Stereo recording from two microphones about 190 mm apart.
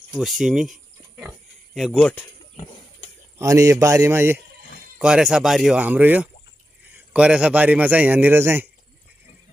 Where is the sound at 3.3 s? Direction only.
15° right (ahead or behind).